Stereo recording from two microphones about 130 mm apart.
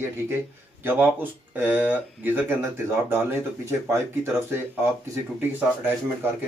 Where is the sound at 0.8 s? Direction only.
15° right (ahead or behind).